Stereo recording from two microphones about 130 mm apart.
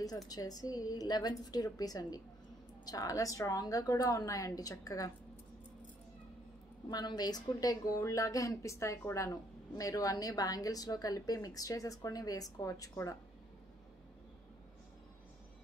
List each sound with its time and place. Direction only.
0.3 s a woman's voice: 30° left (ahead or behind)
6.9 s a woman's voice: 30° left (ahead or behind)